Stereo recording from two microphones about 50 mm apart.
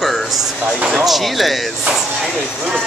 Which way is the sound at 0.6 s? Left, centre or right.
Centre.